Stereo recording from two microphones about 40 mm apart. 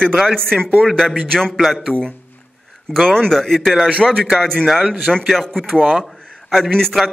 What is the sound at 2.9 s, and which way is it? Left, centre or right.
Speech, centre.